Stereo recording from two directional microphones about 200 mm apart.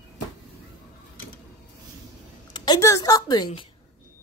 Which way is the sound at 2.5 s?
20° left (ahead or behind).